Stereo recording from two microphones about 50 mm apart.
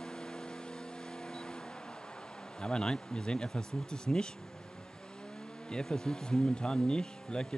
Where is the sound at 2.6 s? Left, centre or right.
Centre.